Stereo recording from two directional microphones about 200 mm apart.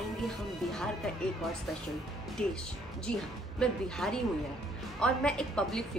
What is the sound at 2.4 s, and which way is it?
A woman's voice, 5° left (ahead or behind).